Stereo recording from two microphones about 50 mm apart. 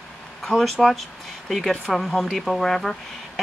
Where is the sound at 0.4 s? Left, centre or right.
Centre.